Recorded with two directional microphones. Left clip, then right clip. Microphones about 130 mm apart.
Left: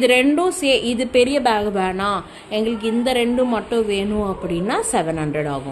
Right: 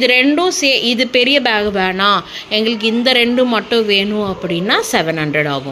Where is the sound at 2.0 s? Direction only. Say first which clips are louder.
Right 8 dB; 20° right (ahead or behind).